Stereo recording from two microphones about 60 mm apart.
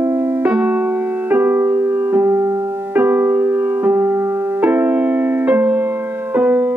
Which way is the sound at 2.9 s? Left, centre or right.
Right.